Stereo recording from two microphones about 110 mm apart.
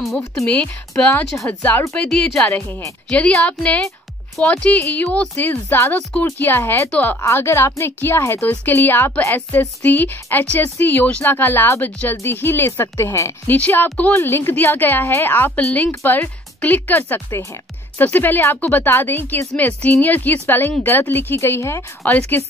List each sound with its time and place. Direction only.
0.2 s speech: 30° left (ahead or behind)
0.5 s a woman's voice: 10° left (ahead or behind)
2.0 s speech: 5° left (ahead or behind)
2.5 s a woman's voice: 25° left (ahead or behind)
3.1 s a woman's voice: 10° left (ahead or behind)
7.2 s a woman's voice: 25° left (ahead or behind)